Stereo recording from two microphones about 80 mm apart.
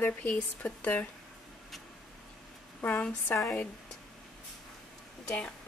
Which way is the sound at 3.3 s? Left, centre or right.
Left.